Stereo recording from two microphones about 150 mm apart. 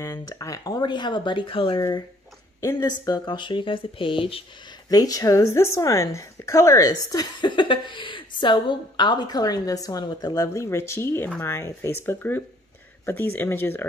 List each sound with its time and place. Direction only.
0.0 s a woman's voice: 20° left (ahead or behind)
1.8 s a woman's voice: 20° left (ahead or behind); by 4.5 s 35° left (ahead or behind)
4.8 s a woman's voice: 25° left (ahead or behind)